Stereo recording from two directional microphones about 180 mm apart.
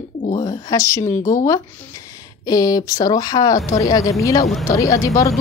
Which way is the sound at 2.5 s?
20° left (ahead or behind).